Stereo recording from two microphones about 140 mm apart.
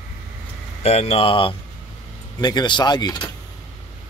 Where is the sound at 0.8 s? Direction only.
50° left (ahead or behind); by 3.3 s 30° left (ahead or behind).